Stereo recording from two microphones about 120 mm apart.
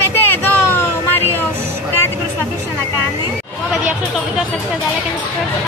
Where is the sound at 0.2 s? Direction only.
20° left (ahead or behind).